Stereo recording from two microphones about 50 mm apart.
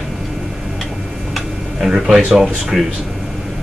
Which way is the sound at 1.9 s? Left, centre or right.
Centre.